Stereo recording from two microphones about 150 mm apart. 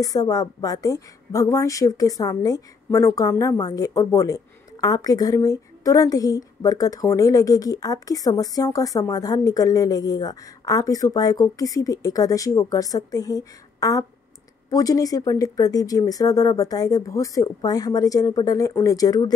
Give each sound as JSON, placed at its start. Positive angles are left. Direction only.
{"t": 0.0, "sound": "a woman's voice", "side_deg": 25}